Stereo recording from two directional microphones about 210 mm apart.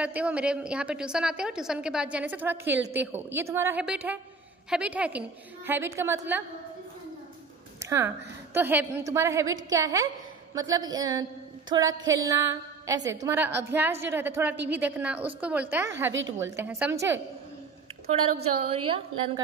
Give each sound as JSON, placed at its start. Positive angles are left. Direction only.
{"t": 0.0, "sound": "a woman's voice", "side_deg": -5}
{"t": 7.8, "sound": "a sound", "side_deg": -15}
{"t": 8.5, "sound": "a woman's voice", "side_deg": -10}
{"t": 16.1, "sound": "a woman's voice", "side_deg": -60}
{"t": 16.5, "sound": "a woman's voice", "side_deg": -10}
{"t": 18.4, "sound": "a woman's voice", "side_deg": -30}